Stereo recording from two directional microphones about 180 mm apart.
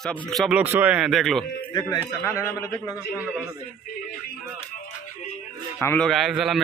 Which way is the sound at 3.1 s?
10° right (ahead or behind).